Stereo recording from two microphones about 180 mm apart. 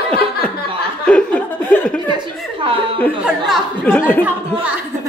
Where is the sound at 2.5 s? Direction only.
30° right (ahead or behind).